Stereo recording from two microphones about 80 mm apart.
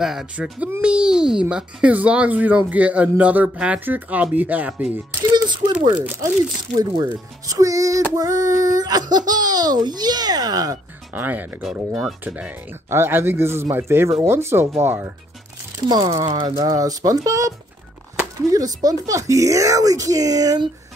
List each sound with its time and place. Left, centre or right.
0.0 s a child's voice: centre
5.3 s a child's voice: right
11.1 s speech: right
11.6 s speech: centre
12.9 s speech: right
15.9 s a child's voice: right
16.6 s speech: right